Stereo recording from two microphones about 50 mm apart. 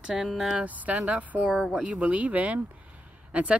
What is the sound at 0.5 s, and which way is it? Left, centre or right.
Speech, right.